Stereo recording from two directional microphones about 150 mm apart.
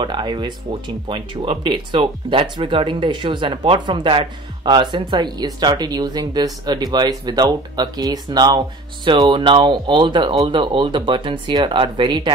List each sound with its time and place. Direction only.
0.0 s speech: 30° right (ahead or behind)